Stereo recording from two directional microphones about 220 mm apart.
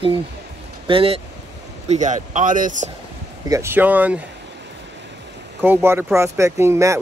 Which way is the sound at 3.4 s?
15° right (ahead or behind).